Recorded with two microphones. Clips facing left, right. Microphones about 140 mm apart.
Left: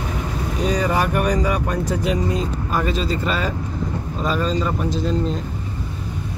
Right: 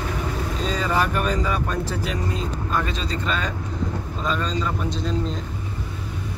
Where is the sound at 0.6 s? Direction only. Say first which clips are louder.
Left 4 dB; 15° left (ahead or behind).